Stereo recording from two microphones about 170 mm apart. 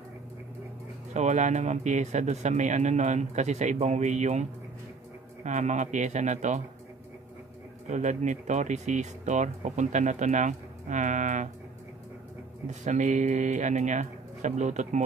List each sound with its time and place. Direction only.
1.1 s speech: 45° right (ahead or behind)
7.9 s speech: 45° right (ahead or behind)
12.6 s speech: 45° right (ahead or behind)